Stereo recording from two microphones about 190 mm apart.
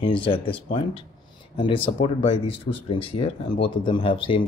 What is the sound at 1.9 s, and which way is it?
Speech, 30° left (ahead or behind).